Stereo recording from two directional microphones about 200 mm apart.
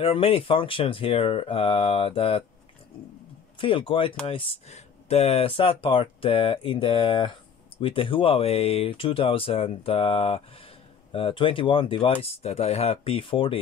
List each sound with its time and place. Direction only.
0.0 s speech: 30° left (ahead or behind)
3.5 s speech: 25° left (ahead or behind)